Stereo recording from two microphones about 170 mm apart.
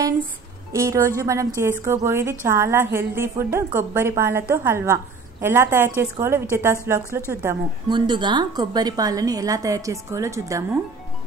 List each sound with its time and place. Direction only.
0.7 s a woman's voice: 15° right (ahead or behind)
7.9 s a woman's voice: 25° right (ahead or behind)